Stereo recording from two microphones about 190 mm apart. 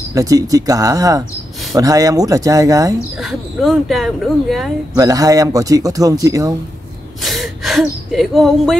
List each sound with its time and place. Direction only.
0.1 s speech: 20° right (ahead or behind)
3.2 s speech: centre (ahead or behind)
4.9 s speech: 20° right (ahead or behind)
7.2 s speech: centre (ahead or behind)